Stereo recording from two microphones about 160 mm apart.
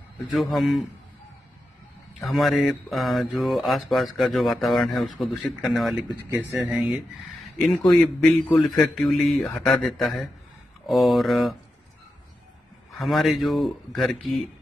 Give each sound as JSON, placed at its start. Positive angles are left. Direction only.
{"t": 0.3, "sound": "speech", "side_deg": 0}
{"t": 2.1, "sound": "speech", "side_deg": 0}
{"t": 13.0, "sound": "speech", "side_deg": 0}